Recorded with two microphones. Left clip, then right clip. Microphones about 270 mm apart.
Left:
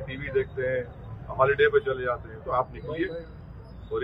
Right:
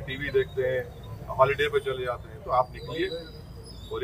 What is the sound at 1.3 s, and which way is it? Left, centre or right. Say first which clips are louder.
Speech: left 2 dB; right.